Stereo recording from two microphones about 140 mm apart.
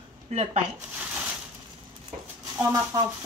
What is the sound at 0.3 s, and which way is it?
Speech, 50° right (ahead or behind).